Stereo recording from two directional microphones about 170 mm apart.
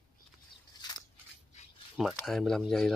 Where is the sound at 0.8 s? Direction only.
25° left (ahead or behind).